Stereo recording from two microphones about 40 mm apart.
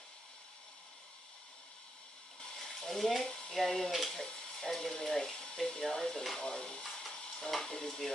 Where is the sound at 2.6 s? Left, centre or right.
Centre.